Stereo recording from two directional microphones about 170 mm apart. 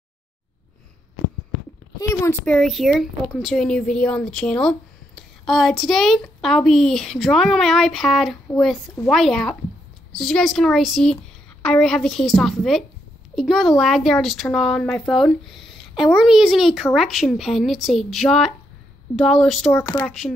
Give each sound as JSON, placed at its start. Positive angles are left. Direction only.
{"t": 2.0, "sound": "speech", "side_deg": 15}
{"t": 19.8, "sound": "speech", "side_deg": 15}
{"t": 20.1, "sound": "speech", "side_deg": 0}